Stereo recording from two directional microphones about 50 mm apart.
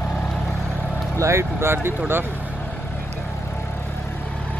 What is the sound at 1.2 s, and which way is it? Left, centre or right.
Speech, right.